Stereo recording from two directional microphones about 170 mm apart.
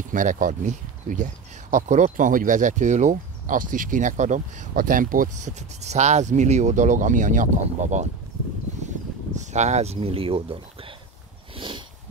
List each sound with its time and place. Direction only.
0.1 s speech: 50° right (ahead or behind)
9.4 s speech: 45° right (ahead or behind)
11.5 s sniff: 30° right (ahead or behind)